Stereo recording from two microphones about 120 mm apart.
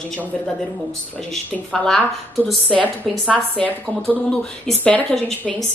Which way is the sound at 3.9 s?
15° left (ahead or behind).